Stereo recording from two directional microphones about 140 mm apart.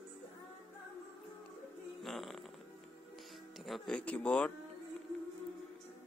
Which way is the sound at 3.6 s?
Centre (ahead or behind).